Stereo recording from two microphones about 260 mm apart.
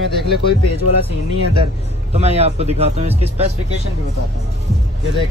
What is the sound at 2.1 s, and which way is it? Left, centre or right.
Speech, right.